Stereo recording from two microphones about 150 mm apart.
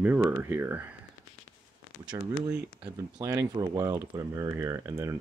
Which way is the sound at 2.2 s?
25° right (ahead or behind).